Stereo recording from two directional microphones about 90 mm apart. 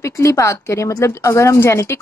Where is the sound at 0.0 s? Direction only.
35° left (ahead or behind).